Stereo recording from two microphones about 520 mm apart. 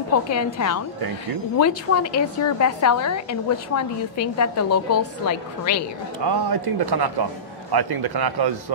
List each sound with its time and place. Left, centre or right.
0.3 s a woman's voice: left
6.2 s a man's voice: right